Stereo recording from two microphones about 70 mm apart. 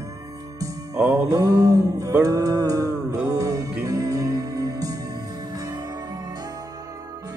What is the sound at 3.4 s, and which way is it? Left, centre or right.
Music, right.